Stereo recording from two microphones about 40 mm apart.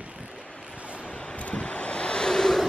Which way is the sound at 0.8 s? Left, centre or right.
Right.